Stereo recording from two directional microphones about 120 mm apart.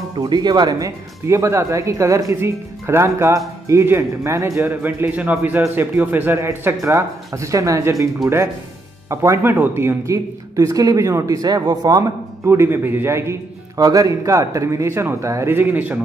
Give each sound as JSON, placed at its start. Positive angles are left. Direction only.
{"t": 0.2, "sound": "speech", "side_deg": -35}
{"t": 9.1, "sound": "speech", "side_deg": -25}
{"t": 12.4, "sound": "speech", "side_deg": -20}